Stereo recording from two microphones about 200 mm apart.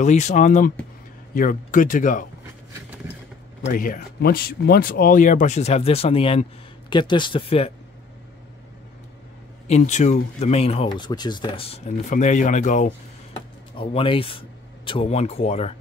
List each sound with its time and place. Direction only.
0.0 s speech: 35° left (ahead or behind)
3.6 s speech: 45° left (ahead or behind)
9.7 s speech: 35° left (ahead or behind)
13.7 s speech: 25° left (ahead or behind)